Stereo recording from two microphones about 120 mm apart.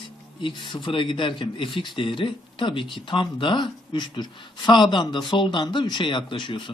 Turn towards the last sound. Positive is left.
turn(degrees=45)  # may be behind; listen again after turning